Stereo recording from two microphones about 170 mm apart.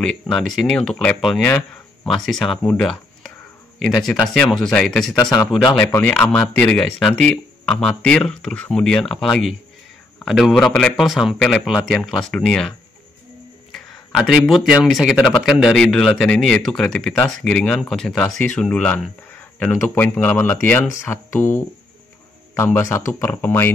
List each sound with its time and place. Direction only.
0.0 s speech: 5° left (ahead or behind)
22.5 s speech: 15° left (ahead or behind)